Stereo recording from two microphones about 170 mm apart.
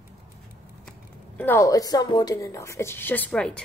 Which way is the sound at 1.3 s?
15° left (ahead or behind).